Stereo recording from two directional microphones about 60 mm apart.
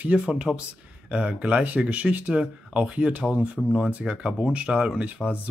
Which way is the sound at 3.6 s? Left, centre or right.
Centre.